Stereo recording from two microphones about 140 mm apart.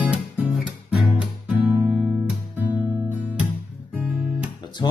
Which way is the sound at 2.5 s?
10° right (ahead or behind).